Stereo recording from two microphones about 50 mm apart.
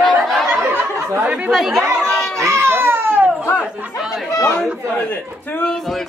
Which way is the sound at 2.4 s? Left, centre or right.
Right.